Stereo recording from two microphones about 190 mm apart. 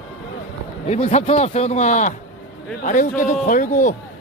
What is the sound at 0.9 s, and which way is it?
A man's voice, 35° left (ahead or behind).